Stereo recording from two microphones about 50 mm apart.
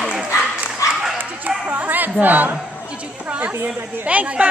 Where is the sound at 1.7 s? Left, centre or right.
Right.